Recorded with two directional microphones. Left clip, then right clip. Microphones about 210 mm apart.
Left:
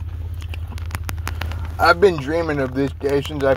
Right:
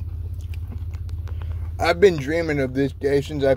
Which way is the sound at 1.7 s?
20° right (ahead or behind).